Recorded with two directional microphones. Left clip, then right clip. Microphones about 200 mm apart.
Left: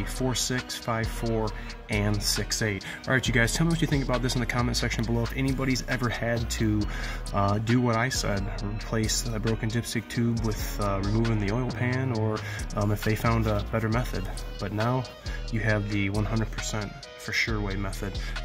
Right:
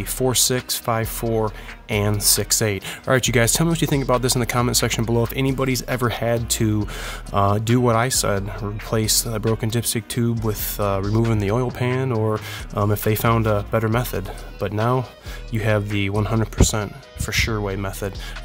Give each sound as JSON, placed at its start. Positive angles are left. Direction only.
{"t": 0.2, "sound": "speech", "side_deg": -55}
{"t": 11.0, "sound": "speech", "side_deg": 0}
{"t": 11.8, "sound": "speech", "side_deg": -55}